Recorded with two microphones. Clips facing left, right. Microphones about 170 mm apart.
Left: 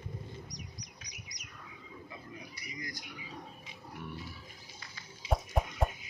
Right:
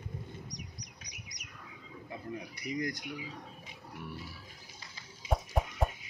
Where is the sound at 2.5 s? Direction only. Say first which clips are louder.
Right 10 dB; 65° right (ahead or behind).